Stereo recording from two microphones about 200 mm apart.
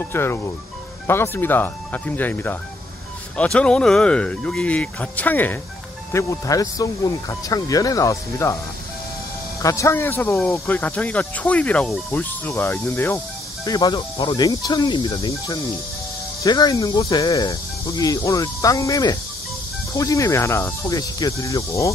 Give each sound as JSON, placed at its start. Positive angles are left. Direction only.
{"t": 0.1, "sound": "speech", "side_deg": 10}
{"t": 9.6, "sound": "speech", "side_deg": 15}